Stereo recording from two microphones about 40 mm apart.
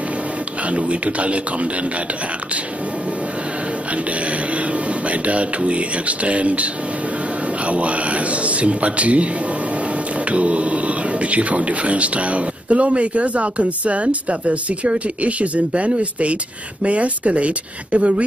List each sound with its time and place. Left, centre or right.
0.7 s speech: right
3.9 s speech: right